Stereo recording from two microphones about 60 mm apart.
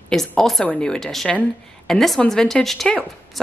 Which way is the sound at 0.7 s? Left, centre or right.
Centre.